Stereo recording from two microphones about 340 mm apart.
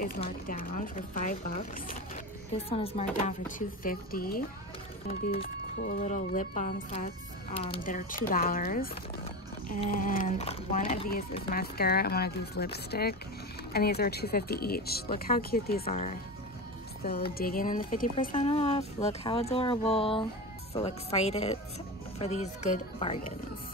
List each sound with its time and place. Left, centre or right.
0.0 s speech: left